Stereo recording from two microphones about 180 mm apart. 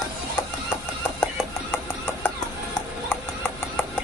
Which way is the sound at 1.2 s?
10° left (ahead or behind).